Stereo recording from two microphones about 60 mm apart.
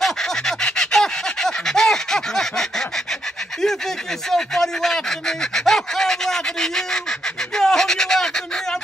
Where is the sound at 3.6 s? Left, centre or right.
Centre.